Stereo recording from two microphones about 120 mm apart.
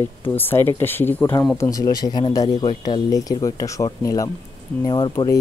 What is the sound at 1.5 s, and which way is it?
Speech, 30° left (ahead or behind).